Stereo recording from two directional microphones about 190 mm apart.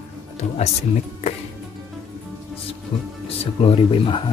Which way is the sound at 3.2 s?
30° left (ahead or behind).